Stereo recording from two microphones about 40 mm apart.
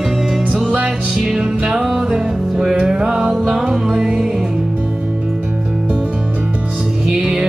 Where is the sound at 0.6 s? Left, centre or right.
Right.